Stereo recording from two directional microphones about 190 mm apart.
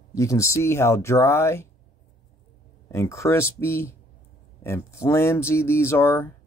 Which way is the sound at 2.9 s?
15° left (ahead or behind).